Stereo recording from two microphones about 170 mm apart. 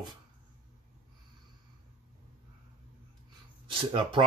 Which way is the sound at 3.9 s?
30° right (ahead or behind).